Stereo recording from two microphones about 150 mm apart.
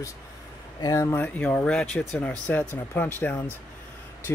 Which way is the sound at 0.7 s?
25° left (ahead or behind).